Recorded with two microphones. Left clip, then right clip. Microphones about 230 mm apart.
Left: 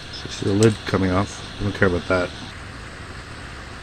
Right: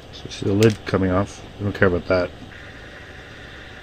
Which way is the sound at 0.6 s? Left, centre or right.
Centre.